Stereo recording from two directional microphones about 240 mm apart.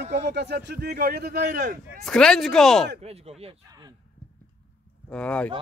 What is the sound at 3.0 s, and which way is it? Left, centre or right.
Speech, right.